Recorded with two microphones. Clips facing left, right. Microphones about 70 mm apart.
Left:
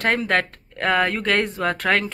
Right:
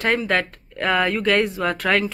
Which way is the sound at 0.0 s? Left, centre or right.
Left.